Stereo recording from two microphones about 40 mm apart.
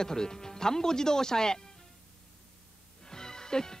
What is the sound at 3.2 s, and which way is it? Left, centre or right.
Music, centre.